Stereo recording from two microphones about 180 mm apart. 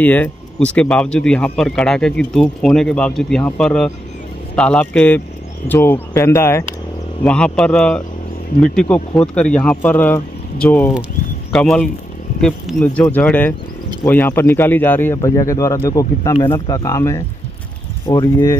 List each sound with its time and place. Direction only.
0.0 s speech: 10° left (ahead or behind)